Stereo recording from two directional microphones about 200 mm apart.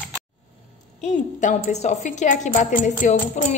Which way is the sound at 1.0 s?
35° left (ahead or behind).